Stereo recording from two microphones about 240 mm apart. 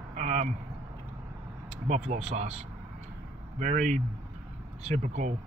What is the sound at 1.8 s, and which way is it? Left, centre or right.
Speech, right.